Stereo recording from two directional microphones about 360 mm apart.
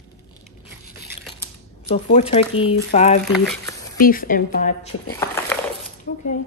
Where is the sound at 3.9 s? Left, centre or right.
Left.